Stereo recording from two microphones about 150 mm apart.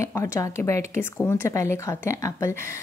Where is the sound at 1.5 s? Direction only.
20° left (ahead or behind).